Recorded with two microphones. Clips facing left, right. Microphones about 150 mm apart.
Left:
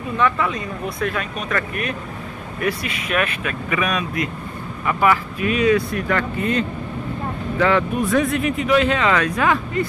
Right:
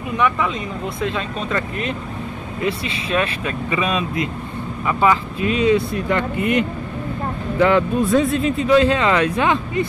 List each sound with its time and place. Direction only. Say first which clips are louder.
0.2 s speech: even; 20° right (ahead or behind)